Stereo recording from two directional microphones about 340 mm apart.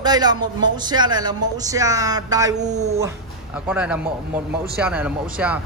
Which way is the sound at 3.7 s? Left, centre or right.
Centre.